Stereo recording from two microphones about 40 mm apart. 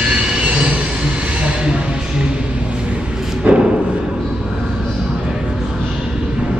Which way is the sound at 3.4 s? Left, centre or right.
Right.